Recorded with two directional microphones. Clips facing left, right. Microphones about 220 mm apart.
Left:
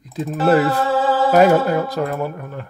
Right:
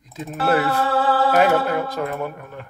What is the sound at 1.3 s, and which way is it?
Speech, 40° left (ahead or behind).